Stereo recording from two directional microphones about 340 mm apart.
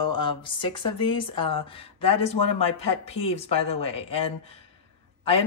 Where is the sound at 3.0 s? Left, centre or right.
Centre.